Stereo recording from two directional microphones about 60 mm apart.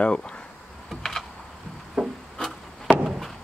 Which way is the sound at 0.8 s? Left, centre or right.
Centre.